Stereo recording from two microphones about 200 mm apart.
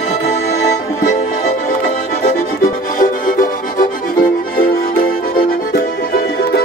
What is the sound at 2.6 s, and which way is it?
Music, 45° left (ahead or behind).